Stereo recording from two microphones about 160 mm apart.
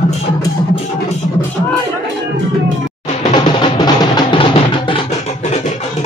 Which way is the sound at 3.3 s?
30° left (ahead or behind).